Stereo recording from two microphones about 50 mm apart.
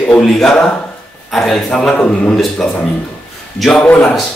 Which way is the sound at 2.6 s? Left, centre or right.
Centre.